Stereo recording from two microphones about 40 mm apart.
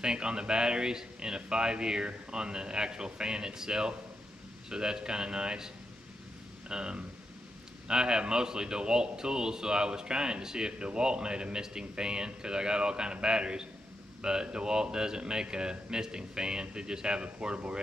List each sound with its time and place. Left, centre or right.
0.0 s a man's voice: centre
6.7 s a man's voice: right